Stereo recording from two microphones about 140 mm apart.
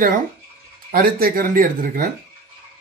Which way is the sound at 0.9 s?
90° right.